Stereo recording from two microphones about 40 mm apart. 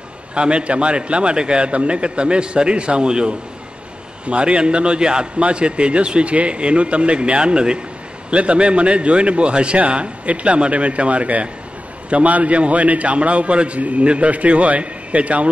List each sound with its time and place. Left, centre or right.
0.3 s a man's voice: right